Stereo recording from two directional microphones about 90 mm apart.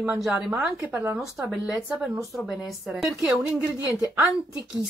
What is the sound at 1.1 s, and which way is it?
Speech, 5° right (ahead or behind).